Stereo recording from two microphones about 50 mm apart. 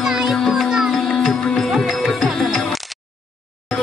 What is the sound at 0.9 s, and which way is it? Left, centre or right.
Music, centre.